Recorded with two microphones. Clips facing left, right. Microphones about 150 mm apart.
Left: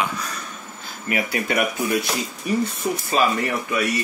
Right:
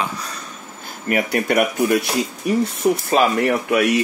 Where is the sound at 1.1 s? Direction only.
50° right (ahead or behind).